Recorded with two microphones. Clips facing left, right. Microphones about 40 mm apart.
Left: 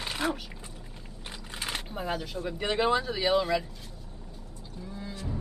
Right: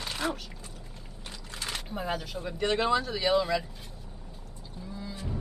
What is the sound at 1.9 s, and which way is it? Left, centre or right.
Speech, centre.